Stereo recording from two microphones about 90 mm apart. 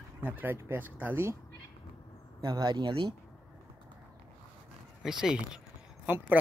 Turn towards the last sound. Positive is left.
turn(degrees=-20)  # may be behind; listen again after turning